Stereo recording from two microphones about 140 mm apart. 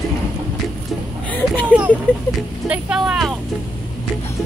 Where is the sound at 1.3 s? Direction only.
10° left (ahead or behind).